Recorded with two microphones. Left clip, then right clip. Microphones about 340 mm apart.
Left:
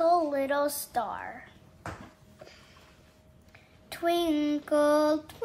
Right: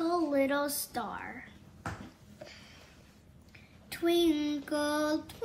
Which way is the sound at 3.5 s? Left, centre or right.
Centre.